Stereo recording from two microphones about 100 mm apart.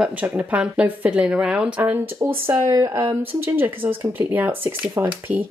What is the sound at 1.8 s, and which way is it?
Speech, 20° right (ahead or behind).